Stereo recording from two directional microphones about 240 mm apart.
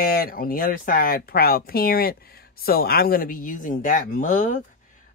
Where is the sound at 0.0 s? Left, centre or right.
Left.